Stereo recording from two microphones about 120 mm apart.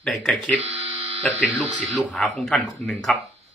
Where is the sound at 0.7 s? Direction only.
50° right (ahead or behind).